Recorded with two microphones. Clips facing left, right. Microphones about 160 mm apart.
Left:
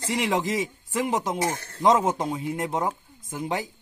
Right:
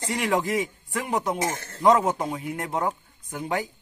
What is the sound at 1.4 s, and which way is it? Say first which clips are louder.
Speech: left 1 dB; 50° right (ahead or behind).